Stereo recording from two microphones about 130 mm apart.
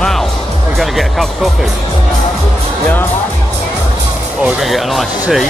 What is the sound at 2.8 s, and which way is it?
Music, 15° left (ahead or behind).